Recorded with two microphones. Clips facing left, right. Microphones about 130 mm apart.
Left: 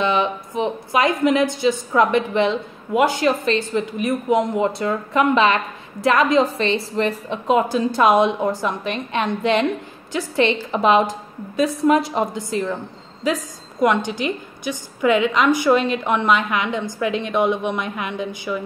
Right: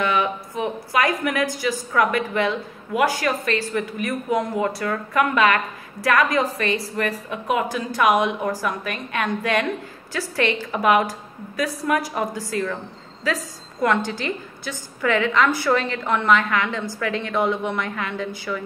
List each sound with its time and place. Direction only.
0.0 s a woman's voice: 25° left (ahead or behind)